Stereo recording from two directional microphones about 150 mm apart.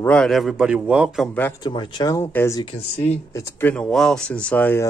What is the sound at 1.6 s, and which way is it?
Speech, 30° left (ahead or behind).